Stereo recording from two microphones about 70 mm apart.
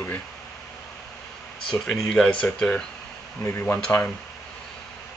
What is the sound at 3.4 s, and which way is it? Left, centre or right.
Speech, left.